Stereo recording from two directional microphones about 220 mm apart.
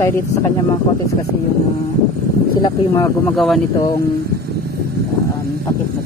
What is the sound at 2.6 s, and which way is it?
Speech, 15° left (ahead or behind).